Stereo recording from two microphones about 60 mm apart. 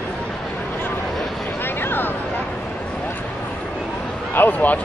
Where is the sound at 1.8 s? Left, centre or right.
Left.